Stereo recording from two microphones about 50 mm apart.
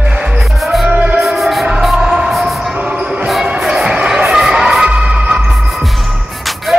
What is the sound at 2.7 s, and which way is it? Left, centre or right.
Basketball bounce, right.